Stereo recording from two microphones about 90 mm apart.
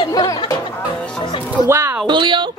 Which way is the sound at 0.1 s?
45° left (ahead or behind).